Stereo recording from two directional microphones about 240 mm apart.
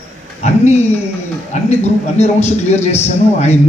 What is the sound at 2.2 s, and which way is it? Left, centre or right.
A man's voice, left.